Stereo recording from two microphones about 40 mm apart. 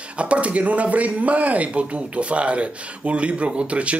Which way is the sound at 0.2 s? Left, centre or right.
Right.